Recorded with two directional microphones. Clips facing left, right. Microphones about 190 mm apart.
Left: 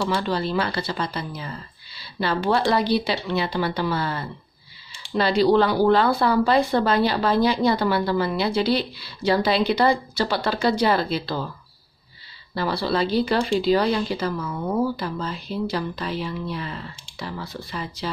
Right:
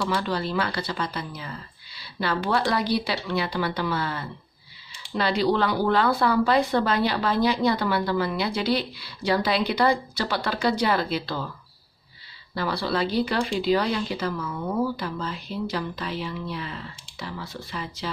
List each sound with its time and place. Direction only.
0.0 s speech: 25° left (ahead or behind)
12.5 s speech: 30° left (ahead or behind)